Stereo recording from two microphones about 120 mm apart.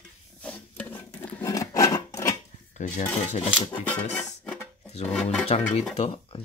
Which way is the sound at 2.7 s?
85° left.